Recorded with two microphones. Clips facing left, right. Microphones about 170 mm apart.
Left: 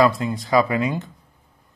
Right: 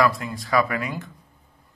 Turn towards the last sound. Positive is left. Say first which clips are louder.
# left 6 dB
turn(degrees=20)  # may be behind; listen again after turning